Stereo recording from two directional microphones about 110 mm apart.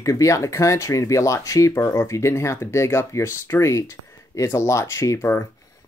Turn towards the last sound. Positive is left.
turn(degrees=20)  # may be behind; listen again after turning